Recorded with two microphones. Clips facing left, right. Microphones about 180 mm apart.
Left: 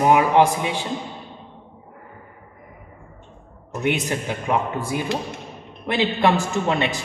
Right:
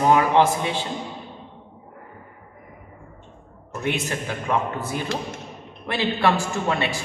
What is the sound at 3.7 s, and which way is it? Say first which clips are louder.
A man's voice: left 3 dB; 20° left (ahead or behind).